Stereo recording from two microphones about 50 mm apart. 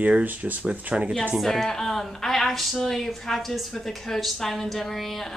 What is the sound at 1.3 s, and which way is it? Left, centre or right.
Speech, centre.